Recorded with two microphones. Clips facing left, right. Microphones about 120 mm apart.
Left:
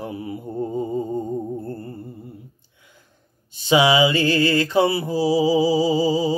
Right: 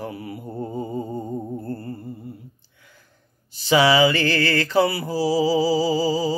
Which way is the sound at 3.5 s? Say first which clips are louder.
Even; 20° left (ahead or behind).